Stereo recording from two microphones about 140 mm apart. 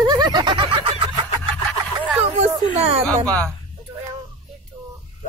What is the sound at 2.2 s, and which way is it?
Speech, 45° right (ahead or behind).